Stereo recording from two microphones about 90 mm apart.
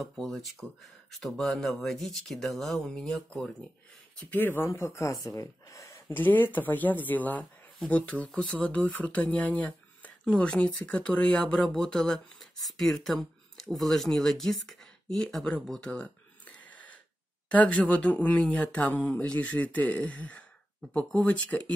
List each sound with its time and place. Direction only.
0.0 s speech: centre (ahead or behind)
4.2 s speech: 20° left (ahead or behind)
6.1 s speech: 20° left (ahead or behind)